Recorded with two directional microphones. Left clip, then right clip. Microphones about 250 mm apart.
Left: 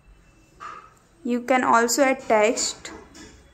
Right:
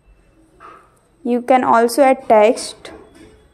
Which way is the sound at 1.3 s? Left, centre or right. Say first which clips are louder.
Right 6 dB; centre.